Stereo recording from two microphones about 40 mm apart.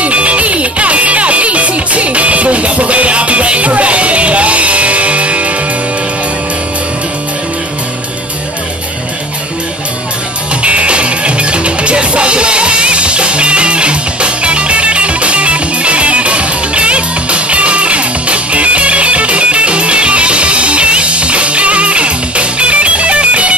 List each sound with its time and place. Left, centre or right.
0.0 s music: right
10.6 s music: right